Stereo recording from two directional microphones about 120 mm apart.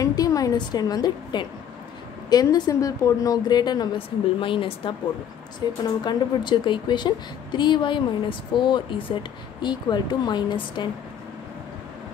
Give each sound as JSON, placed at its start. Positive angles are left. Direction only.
{"t": 0.0, "sound": "a woman's voice", "side_deg": 30}
{"t": 4.4, "sound": "a woman's voice", "side_deg": 45}